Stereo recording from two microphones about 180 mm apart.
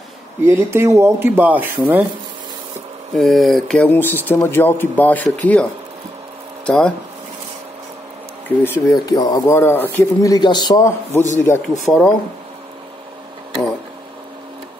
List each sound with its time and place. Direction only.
0.5 s speech: 15° right (ahead or behind)
3.2 s speech: centre (ahead or behind)
8.5 s speech: 10° left (ahead or behind)
8.9 s speech: 20° left (ahead or behind)
9.6 s speech: 10° left (ahead or behind)
11.7 s speech: centre (ahead or behind)